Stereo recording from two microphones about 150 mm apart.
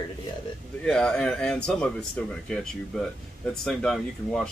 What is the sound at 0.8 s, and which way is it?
Speech, 5° left (ahead or behind).